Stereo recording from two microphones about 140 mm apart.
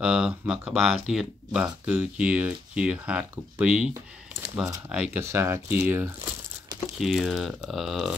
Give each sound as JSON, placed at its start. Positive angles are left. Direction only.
{"t": 0.0, "sound": "speech", "side_deg": -5}
{"t": 4.9, "sound": "speech", "side_deg": -10}
{"t": 5.2, "sound": "speech", "side_deg": -20}
{"t": 7.0, "sound": "speech", "side_deg": 0}